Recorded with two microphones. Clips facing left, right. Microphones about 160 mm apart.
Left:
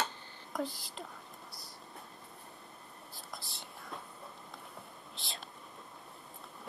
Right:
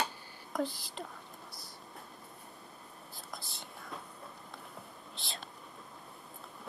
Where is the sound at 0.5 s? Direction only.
Centre (ahead or behind).